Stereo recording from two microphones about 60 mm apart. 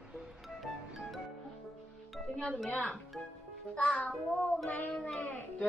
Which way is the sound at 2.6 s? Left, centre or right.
Centre.